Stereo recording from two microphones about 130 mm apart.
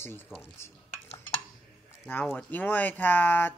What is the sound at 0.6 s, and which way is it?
Dishes, 20° left (ahead or behind).